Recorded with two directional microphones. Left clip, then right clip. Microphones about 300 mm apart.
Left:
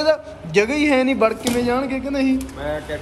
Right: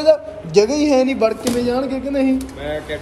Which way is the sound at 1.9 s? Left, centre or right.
Centre.